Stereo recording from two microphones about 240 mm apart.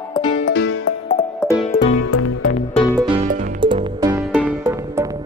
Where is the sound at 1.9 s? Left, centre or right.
Left.